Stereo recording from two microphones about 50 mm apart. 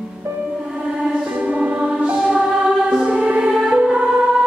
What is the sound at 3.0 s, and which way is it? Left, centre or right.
Music, centre.